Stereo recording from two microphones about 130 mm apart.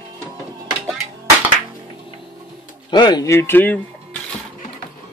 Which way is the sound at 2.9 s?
35° left (ahead or behind).